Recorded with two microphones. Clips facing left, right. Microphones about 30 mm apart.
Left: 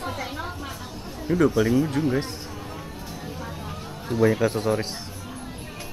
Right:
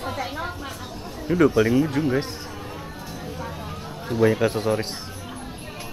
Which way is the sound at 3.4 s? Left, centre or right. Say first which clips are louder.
Right 2 dB; centre.